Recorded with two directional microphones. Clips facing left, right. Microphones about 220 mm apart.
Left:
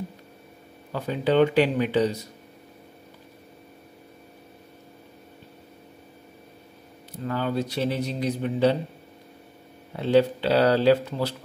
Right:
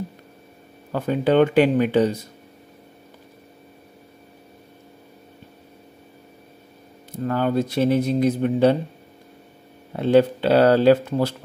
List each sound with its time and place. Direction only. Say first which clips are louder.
0.9 s a man's voice: right 4 dB; 50° right (ahead or behind)
7.1 s a man's voice: right 5 dB; 50° right (ahead or behind)
9.9 s a man's voice: right 4 dB; 50° right (ahead or behind)